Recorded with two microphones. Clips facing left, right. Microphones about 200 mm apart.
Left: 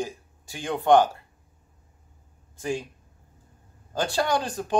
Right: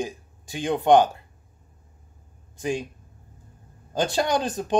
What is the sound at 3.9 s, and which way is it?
Speech, 20° right (ahead or behind).